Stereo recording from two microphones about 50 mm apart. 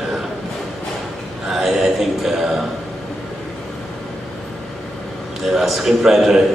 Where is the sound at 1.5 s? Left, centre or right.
Centre.